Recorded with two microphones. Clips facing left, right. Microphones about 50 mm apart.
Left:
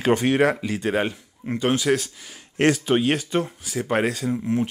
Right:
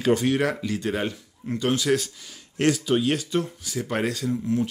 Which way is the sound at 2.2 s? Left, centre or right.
Left.